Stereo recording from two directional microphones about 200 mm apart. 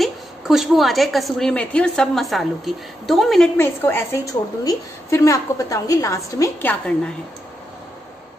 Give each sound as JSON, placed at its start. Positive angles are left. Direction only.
{"t": 0.0, "sound": "a woman's voice", "side_deg": 0}
{"t": 3.5, "sound": "a woman's voice", "side_deg": 10}